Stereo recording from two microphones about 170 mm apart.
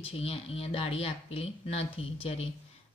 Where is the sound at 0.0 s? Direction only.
35° left (ahead or behind).